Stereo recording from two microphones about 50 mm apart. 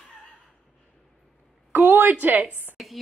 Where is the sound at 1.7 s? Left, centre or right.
Right.